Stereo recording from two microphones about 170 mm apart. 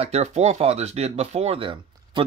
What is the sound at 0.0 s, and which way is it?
Speech, 40° right (ahead or behind).